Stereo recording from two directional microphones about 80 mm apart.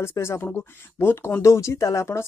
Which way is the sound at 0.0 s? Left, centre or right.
Left.